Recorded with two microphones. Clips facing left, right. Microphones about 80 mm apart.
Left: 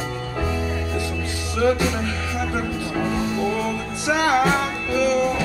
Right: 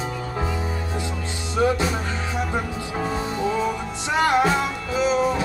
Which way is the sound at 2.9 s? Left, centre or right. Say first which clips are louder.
Left 2 dB; right.